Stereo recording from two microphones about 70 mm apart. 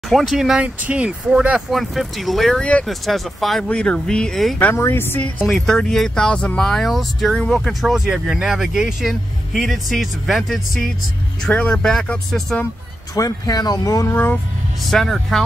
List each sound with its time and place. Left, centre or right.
0.1 s speech: centre
0.6 s speech: centre
1.7 s speech: centre
3.6 s speech: centre
4.7 s a woman's voice: left
5.5 s speech: centre
7.9 s speech: centre
11.5 s speech: centre
13.1 s speech: left
14.9 s speech: centre